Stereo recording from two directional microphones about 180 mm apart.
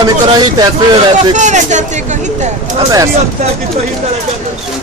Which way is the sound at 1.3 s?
40° right (ahead or behind).